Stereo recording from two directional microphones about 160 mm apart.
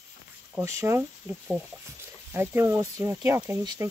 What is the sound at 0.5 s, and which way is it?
Speech, 15° right (ahead or behind).